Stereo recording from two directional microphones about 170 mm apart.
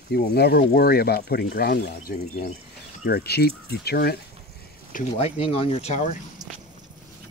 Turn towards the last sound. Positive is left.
turn(degrees=45)  # may be behind; listen again after turning